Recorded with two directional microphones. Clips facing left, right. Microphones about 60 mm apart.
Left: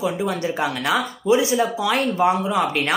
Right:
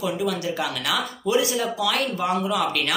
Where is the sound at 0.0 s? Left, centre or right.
Left.